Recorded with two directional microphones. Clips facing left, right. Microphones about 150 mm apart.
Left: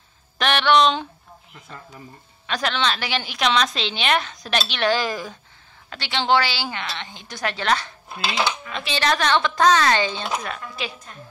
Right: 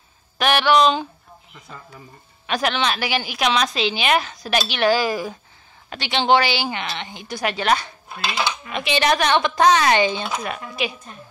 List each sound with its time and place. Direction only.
0.4 s a woman's voice: 10° right (ahead or behind)
2.4 s a woman's voice: 15° right (ahead or behind)